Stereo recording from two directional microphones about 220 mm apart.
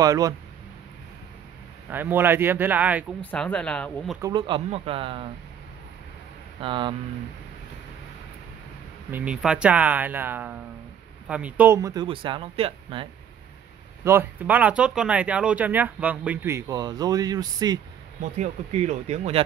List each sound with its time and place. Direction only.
0.0 s speech: 15° right (ahead or behind)
1.9 s speech: 10° right (ahead or behind)
3.2 s speech: 5° left (ahead or behind)
4.2 s speech: 20° right (ahead or behind)
6.6 s speech: 25° right (ahead or behind)
9.1 s speech: 5° right (ahead or behind); by 13.1 s 25° right (ahead or behind)
14.0 s speech: 10° right (ahead or behind)
18.4 s speech: 30° right (ahead or behind)